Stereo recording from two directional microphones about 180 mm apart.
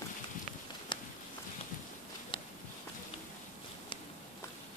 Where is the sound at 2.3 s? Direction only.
30° left (ahead or behind).